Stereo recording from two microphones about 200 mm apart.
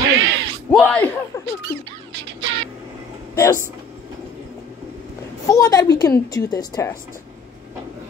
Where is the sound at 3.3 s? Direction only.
15° left (ahead or behind).